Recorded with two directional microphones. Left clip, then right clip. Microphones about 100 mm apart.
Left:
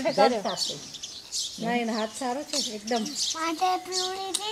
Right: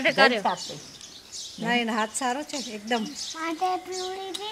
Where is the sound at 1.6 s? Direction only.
45° right (ahead or behind).